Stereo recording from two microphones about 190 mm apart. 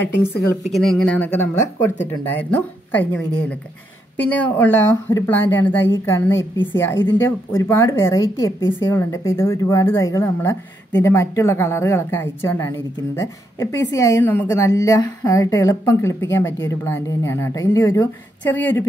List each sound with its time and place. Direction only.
0.0 s speech: 10° left (ahead or behind)
4.2 s speech: 10° left (ahead or behind)